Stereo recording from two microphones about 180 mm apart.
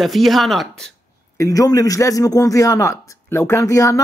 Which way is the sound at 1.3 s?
20° left (ahead or behind).